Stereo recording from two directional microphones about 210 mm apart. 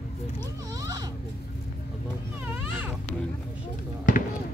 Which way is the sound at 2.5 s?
10° right (ahead or behind).